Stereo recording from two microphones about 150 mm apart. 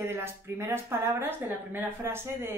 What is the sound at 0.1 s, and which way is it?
Speech, 15° right (ahead or behind).